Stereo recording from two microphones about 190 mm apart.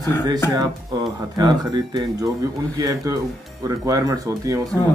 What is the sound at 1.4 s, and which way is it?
A man's voice, 20° right (ahead or behind).